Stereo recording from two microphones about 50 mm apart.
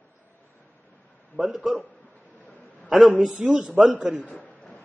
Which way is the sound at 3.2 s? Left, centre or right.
Centre.